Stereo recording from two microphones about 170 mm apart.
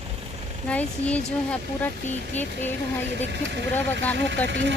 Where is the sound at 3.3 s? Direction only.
90° right.